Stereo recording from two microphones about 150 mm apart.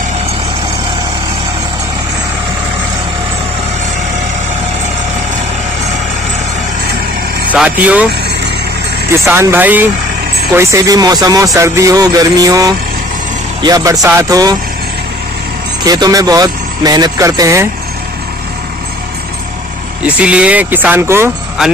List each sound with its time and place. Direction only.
7.5 s speech: 10° right (ahead or behind)
9.2 s speech: 15° right (ahead or behind)
15.8 s speech: 25° right (ahead or behind)
20.2 s speech: 10° right (ahead or behind)